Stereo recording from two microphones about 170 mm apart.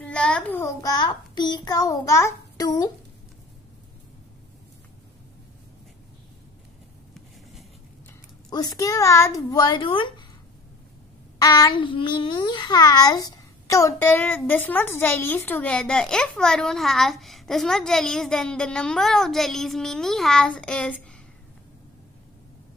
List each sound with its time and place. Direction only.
0.0 s a child's voice: 5° left (ahead or behind); by 2.9 s 20° left (ahead or behind)
8.5 s a child's voice: 20° left (ahead or behind)
11.4 s a child's voice: 25° left (ahead or behind); by 20.9 s 5° left (ahead or behind)